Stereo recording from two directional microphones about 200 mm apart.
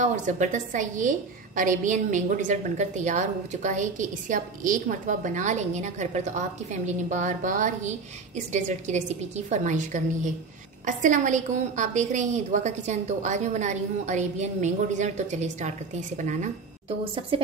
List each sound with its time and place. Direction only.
0.0 s a woman's voice: 40° right (ahead or behind)
17.0 s a woman's voice: 25° right (ahead or behind)